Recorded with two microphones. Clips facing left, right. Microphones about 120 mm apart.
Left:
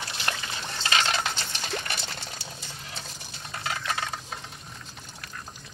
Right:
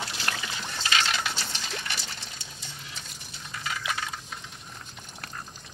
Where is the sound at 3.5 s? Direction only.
60° left (ahead or behind).